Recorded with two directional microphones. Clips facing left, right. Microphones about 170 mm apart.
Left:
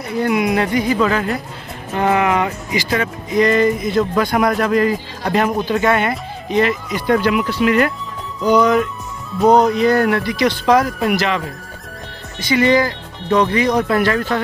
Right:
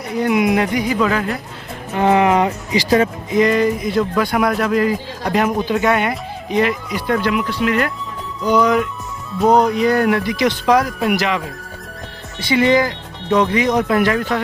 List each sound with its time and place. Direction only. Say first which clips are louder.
0.2 s speech: right 1 dB; 20° right (ahead or behind)
1.0 s speech: left 1 dB; centre (ahead or behind)
2.0 s speech: right 3 dB; 30° right (ahead or behind)
3.3 s speech: left 1 dB; 5° right (ahead or behind)
12.4 s speech: even; 25° right (ahead or behind)